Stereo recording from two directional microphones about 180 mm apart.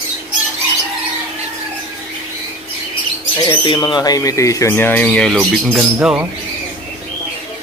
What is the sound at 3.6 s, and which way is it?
Speech, 25° left (ahead or behind).